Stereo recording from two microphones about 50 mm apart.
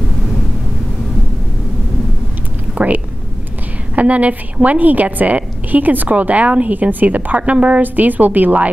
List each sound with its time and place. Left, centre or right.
2.7 s a sound: right
3.9 s a woman's voice: right
7.8 s a woman's voice: right